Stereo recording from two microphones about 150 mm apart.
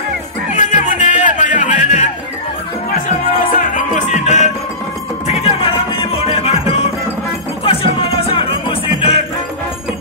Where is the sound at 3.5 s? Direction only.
60° left (ahead or behind); by 9.2 s 40° left (ahead or behind).